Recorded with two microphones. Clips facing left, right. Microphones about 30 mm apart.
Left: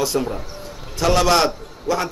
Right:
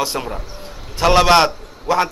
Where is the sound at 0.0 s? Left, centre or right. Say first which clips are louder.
Left 1 dB; right.